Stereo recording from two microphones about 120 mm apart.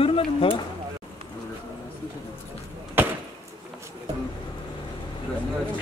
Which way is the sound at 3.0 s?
15° right (ahead or behind).